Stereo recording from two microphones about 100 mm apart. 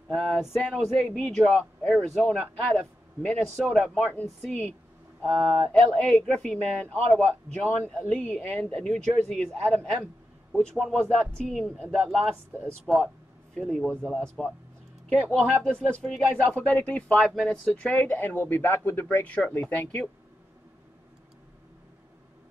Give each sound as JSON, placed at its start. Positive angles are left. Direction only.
{"t": 0.1, "sound": "speech", "side_deg": 0}
{"t": 15.7, "sound": "speech", "side_deg": 10}
{"t": 16.2, "sound": "speech", "side_deg": -10}
{"t": 16.5, "sound": "speech", "side_deg": 15}